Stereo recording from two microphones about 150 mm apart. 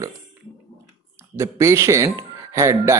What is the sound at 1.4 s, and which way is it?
A man's voice, 20° right (ahead or behind).